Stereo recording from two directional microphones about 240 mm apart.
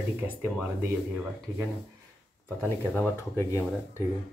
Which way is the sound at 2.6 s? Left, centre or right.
Centre.